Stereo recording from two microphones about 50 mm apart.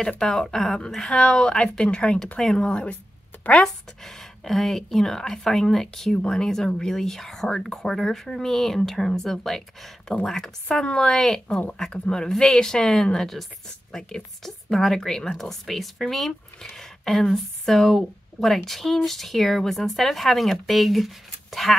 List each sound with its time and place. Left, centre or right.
0.2 s speech: centre
3.6 s a woman's voice: centre